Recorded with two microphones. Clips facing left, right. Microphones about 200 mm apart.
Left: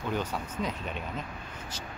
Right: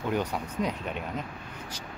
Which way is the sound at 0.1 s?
10° right (ahead or behind).